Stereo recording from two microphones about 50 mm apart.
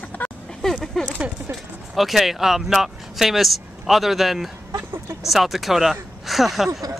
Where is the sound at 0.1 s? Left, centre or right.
Left.